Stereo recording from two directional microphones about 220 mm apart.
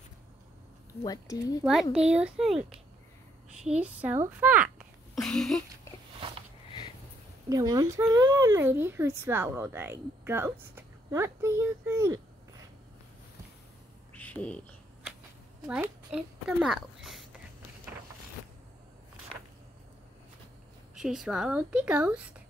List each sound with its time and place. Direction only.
1.0 s speech: 15° left (ahead or behind)
1.6 s a woman's voice: centre (ahead or behind)
3.8 s a woman's voice: 10° right (ahead or behind)
7.4 s speech: 15° right (ahead or behind)
14.1 s a sound: 5° left (ahead or behind)
15.6 s a child's voice: 5° right (ahead or behind)
20.9 s a woman's voice: centre (ahead or behind)